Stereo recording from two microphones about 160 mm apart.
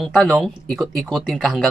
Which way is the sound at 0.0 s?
5° left (ahead or behind).